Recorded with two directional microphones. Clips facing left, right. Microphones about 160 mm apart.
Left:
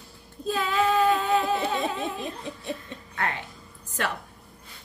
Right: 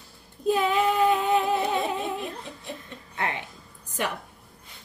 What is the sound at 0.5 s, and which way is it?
Female singing, 15° right (ahead or behind).